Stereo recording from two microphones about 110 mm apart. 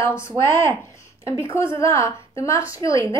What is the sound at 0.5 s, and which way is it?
A woman's voice, 25° left (ahead or behind).